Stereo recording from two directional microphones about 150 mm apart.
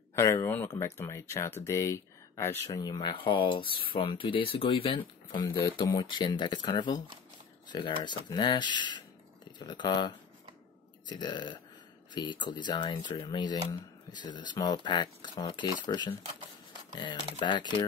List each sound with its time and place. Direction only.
0.1 s speech: 20° left (ahead or behind)